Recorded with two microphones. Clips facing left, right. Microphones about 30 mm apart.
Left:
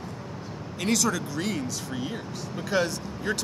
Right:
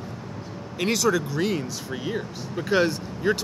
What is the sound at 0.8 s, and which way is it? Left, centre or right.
Speech, centre.